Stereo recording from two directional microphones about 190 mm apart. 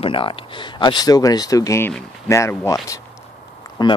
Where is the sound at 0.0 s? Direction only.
25° left (ahead or behind).